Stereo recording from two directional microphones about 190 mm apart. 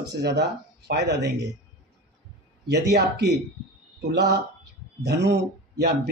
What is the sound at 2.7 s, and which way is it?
Speech, 60° right (ahead or behind).